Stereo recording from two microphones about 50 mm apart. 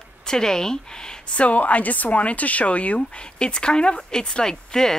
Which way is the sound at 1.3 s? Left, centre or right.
Left.